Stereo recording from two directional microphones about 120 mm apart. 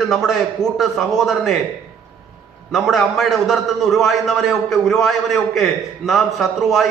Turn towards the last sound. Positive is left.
turn(degrees=0)  # may be behind; listen again after turning